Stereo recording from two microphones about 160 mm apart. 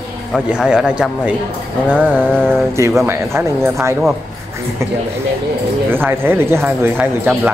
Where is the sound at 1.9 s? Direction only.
5° left (ahead or behind).